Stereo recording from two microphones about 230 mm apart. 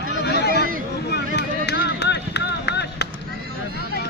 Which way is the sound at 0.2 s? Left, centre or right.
Left.